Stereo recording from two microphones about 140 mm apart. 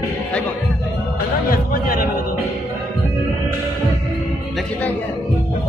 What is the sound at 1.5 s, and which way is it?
Music, 90° left.